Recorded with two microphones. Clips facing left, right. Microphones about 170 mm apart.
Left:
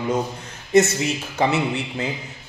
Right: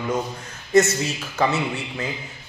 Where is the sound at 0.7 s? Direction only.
20° left (ahead or behind).